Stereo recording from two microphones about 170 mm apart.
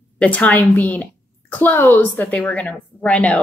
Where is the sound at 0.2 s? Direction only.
10° left (ahead or behind).